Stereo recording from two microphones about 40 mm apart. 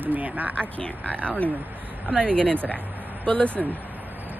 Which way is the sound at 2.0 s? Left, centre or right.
Centre.